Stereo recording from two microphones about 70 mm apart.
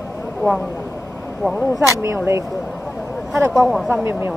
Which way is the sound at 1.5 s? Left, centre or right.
Centre.